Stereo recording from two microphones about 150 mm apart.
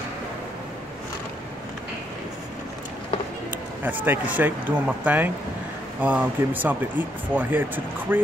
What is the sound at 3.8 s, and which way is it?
Speech, 10° right (ahead or behind).